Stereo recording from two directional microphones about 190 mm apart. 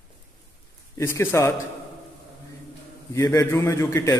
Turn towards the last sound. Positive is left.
turn(degrees=15)  # may be behind; listen again after turning